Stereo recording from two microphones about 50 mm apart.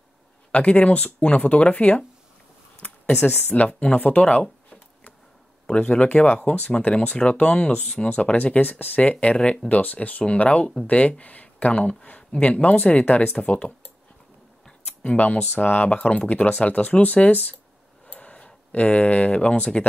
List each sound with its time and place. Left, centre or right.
0.5 s speech: left
3.6 s speech: left
8.5 s speech: left
15.0 s speech: left
15.5 s speech: left; by 19.8 s centre